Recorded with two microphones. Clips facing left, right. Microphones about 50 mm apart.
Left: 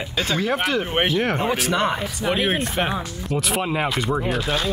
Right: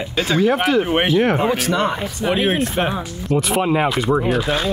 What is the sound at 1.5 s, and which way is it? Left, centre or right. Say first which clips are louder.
Speech: right 2 dB; centre.